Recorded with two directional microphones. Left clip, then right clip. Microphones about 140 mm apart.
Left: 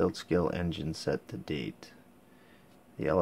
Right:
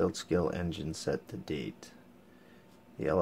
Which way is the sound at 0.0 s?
15° left (ahead or behind).